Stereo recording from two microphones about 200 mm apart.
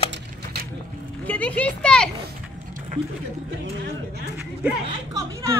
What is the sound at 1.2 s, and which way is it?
Speech, 5° left (ahead or behind).